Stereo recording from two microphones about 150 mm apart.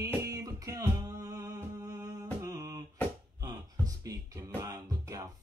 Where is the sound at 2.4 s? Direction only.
25° right (ahead or behind).